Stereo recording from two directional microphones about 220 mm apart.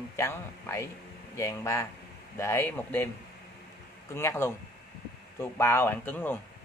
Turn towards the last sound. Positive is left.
turn(degrees=10)  # may be behind; listen again after turning